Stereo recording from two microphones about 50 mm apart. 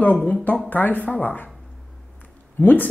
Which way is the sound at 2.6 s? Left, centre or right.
Left.